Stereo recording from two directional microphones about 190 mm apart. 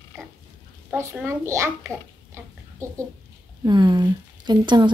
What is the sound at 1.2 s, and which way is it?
A child's voice, 15° right (ahead or behind).